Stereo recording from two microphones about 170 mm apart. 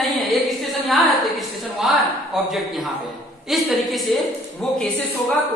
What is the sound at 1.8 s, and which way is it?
Speech, centre (ahead or behind).